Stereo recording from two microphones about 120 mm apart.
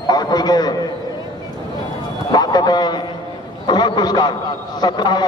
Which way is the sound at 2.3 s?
35° left (ahead or behind).